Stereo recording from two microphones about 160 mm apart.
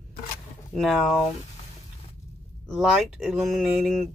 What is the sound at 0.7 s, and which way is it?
Speech, centre (ahead or behind).